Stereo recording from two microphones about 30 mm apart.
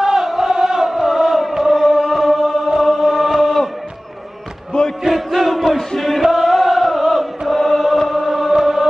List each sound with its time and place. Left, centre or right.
0.0 s chant: centre
2.8 s chant: centre
4.7 s basketball bounce: left
5.3 s battle cry: centre
5.9 s chant: centre
6.2 s chant: centre
6.5 s chant: centre